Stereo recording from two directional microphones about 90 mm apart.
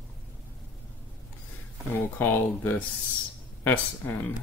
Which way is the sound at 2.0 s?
20° left (ahead or behind).